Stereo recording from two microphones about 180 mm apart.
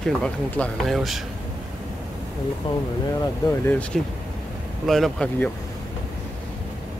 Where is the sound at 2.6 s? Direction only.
25° left (ahead or behind).